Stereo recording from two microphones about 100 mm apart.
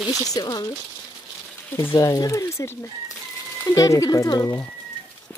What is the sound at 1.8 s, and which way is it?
Speech, 30° left (ahead or behind).